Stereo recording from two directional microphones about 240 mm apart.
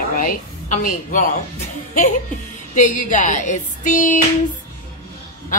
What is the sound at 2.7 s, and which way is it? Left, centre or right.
A woman's voice, left.